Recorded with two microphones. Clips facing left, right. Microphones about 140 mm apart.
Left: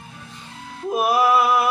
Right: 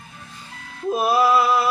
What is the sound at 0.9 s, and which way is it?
Speech, 15° left (ahead or behind).